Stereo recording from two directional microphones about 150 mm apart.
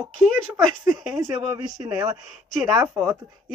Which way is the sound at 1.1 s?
15° right (ahead or behind).